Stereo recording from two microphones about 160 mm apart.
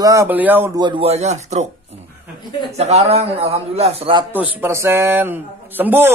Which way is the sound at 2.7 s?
40° right (ahead or behind).